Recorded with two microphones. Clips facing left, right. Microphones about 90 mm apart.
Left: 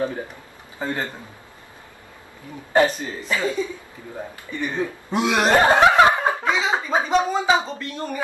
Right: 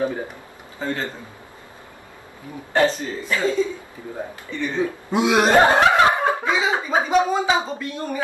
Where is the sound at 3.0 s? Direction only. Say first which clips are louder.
Right 1 dB; 15° left (ahead or behind).